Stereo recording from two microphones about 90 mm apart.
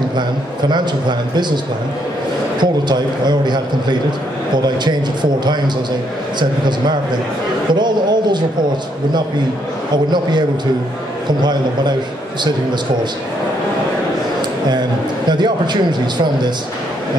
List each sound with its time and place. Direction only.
0.7 s a man's voice: 55° right (ahead or behind)
2.6 s a man's voice: 55° right (ahead or behind)
4.6 s a man's voice: 55° right (ahead or behind)
7.7 s a sound: 55° right (ahead or behind)
15.2 s a man's voice: 55° right (ahead or behind)